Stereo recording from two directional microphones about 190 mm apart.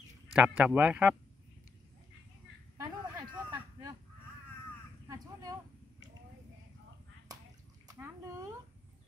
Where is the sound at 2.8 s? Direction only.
20° right (ahead or behind).